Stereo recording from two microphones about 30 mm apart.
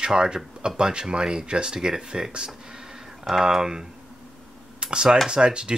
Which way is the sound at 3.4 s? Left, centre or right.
Centre.